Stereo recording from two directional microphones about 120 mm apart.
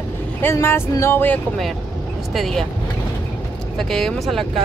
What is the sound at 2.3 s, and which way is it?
Speech, centre (ahead or behind).